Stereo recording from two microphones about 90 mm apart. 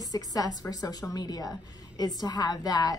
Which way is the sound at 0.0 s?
45° left (ahead or behind).